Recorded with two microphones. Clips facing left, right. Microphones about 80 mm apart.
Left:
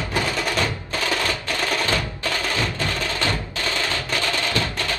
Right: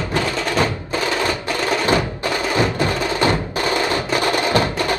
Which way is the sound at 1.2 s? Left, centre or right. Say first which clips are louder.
Right 4 dB; right.